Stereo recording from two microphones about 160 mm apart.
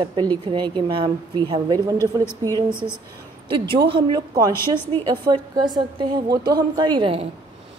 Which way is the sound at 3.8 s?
30° right (ahead or behind).